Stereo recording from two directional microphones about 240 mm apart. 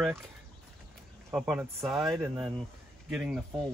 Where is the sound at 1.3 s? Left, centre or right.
Centre.